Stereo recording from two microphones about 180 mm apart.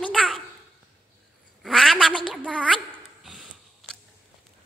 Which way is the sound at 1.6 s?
Centre (ahead or behind).